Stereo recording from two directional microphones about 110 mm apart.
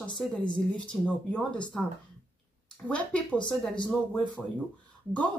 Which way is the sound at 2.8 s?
10° left (ahead or behind).